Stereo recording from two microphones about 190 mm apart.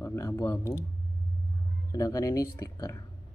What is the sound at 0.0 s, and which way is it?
Speech, 15° left (ahead or behind).